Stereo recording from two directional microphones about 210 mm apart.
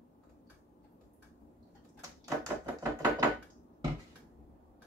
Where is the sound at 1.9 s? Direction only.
15° right (ahead or behind).